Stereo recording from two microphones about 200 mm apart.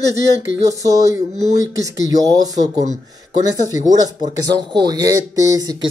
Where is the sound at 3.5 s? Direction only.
20° right (ahead or behind).